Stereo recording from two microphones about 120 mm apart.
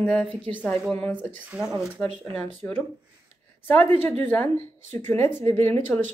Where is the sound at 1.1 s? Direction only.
10° right (ahead or behind).